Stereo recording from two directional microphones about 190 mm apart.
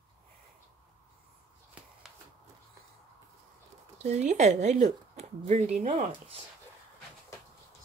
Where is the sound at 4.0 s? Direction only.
35° right (ahead or behind).